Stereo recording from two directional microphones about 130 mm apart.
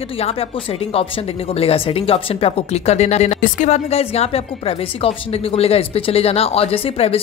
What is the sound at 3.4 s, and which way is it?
Speech, 70° left (ahead or behind).